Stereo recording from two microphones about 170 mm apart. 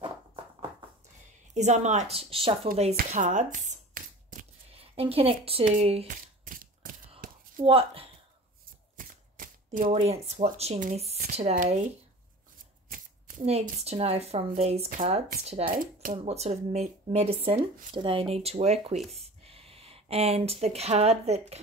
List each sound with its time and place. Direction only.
1.5 s speech: 45° right (ahead or behind)
3.1 s speech: 45° right (ahead or behind)
3.6 s a sound: 50° right (ahead or behind)
4.7 s a woman's voice: 35° right (ahead or behind)
6.0 s a sound: 50° right (ahead or behind)
7.6 s speech: 35° right (ahead or behind)
8.9 s shuffling cards: 50° right (ahead or behind)
9.8 s speech: 35° right (ahead or behind)
13.5 s speech: 40° right (ahead or behind)
15.6 s speech: 55° right (ahead or behind)
16.3 s speech: 40° right (ahead or behind)